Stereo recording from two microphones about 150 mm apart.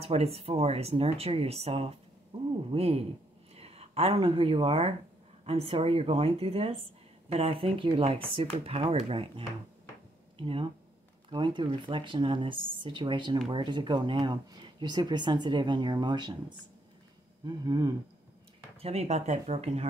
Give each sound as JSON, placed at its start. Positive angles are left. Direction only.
{"t": 0.0, "sound": "speech", "side_deg": -40}
{"t": 17.5, "sound": "speech", "side_deg": -25}
{"t": 18.8, "sound": "speech", "side_deg": -40}